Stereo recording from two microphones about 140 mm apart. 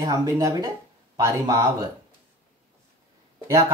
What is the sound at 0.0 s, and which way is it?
Speech, 25° right (ahead or behind).